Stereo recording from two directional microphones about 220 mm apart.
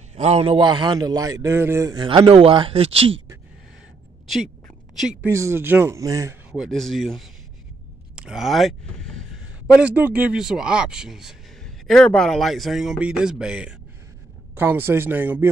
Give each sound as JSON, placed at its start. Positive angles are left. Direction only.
{"t": 0.1, "sound": "a man's voice", "side_deg": -30}
{"t": 4.3, "sound": "a sound", "side_deg": 0}
{"t": 5.4, "sound": "speech", "side_deg": -10}
{"t": 6.5, "sound": "speech", "side_deg": 0}